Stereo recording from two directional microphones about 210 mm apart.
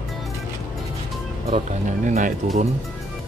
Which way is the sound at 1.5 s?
30° right (ahead or behind).